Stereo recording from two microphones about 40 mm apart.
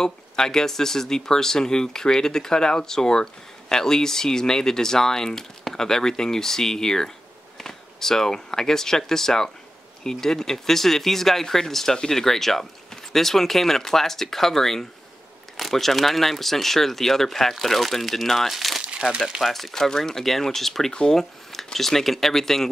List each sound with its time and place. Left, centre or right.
0.0 s speech: centre
18.8 s crumpling: right
19.0 s speech: centre
19.4 s speech: centre